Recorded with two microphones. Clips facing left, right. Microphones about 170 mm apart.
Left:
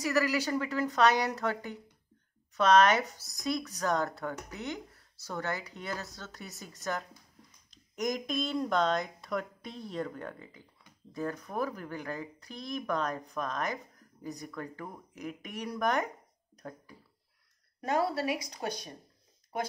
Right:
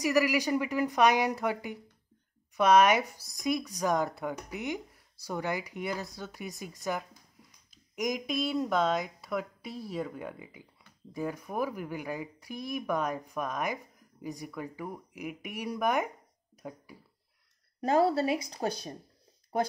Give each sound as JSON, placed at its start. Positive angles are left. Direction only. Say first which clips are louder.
{"t": 0.0, "sound": "speech", "louder": "right 3 dB", "side_deg": -15}
{"t": 17.7, "sound": "a woman's voice", "louder": "right 5 dB", "side_deg": -30}